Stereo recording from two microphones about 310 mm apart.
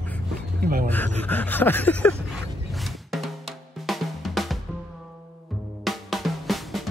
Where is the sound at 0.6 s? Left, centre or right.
Right.